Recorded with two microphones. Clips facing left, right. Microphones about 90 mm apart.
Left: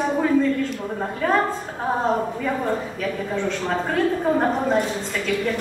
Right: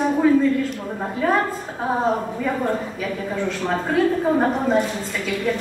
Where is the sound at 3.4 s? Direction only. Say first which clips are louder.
Right 2 dB; 5° right (ahead or behind).